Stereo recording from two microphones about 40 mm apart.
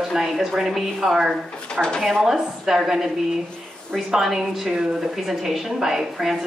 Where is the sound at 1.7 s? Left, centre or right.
Centre.